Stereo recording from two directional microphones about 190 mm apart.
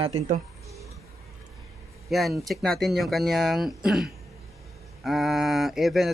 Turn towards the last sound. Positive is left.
turn(degrees=0)  # may be behind; listen again after turning